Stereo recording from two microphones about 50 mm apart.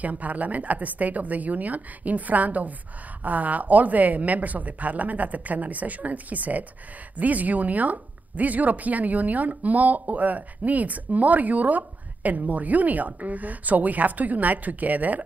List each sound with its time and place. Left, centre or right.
0.0 s speech: right